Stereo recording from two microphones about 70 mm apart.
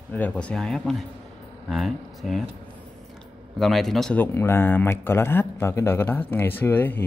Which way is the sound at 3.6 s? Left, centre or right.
Centre.